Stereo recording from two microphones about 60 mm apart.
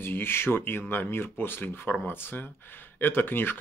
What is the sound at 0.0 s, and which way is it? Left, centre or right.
Speech, left.